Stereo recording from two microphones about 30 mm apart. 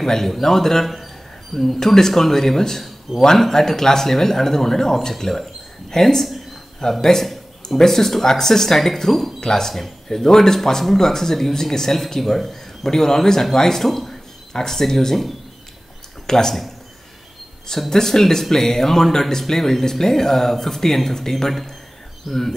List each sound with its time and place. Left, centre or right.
0.0 s speech: centre
0.8 s a sound: centre
2.0 s speech: centre
6.2 s a sound: centre
6.8 s speech: centre
16.3 s speech: centre
17.8 s speech: centre